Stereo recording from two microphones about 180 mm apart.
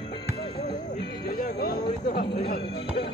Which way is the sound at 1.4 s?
55° left (ahead or behind).